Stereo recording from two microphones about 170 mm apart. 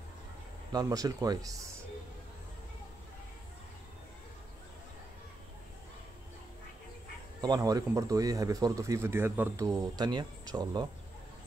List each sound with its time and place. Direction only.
0.7 s speech: 20° right (ahead or behind)
7.4 s speech: 25° right (ahead or behind)